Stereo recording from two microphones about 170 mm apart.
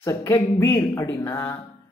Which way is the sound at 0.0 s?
20° left (ahead or behind).